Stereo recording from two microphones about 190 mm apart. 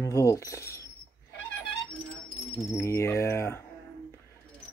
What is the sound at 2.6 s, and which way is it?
Speech, 15° left (ahead or behind).